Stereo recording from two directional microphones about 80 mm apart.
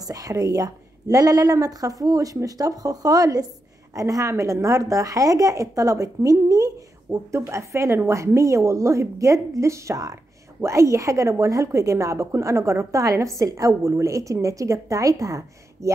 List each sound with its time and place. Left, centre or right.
0.0 s a woman's voice: right
7.1 s a woman's voice: right